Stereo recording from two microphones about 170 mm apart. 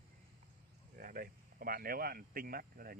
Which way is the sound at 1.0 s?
60° right (ahead or behind).